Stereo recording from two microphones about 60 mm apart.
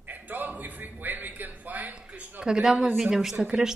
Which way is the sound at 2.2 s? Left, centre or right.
Right.